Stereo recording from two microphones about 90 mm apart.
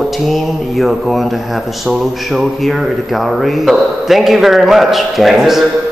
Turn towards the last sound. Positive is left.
turn(degrees=0)  # may be behind; listen again after turning